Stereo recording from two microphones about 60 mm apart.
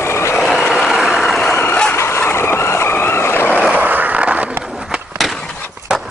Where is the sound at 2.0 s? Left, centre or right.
Left.